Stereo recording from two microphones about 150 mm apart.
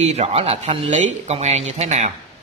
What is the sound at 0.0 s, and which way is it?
Speech, 45° right (ahead or behind).